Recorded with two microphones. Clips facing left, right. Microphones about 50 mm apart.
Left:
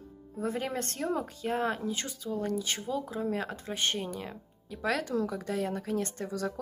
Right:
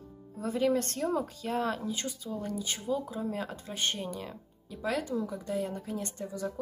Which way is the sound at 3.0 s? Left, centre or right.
Left.